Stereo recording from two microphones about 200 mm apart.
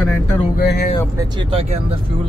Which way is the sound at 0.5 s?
50° left (ahead or behind).